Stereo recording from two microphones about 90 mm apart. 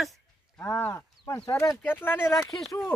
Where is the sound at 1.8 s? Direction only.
25° left (ahead or behind).